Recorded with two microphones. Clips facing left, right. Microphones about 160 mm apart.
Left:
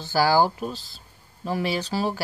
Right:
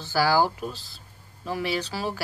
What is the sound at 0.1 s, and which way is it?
Speech, 25° left (ahead or behind).